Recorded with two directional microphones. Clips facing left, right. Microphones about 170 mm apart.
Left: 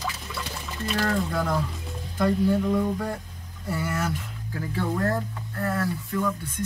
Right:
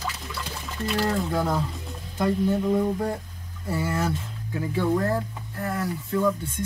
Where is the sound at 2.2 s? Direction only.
25° right (ahead or behind).